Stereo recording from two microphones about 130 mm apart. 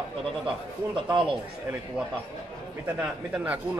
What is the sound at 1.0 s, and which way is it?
Speech, 40° right (ahead or behind).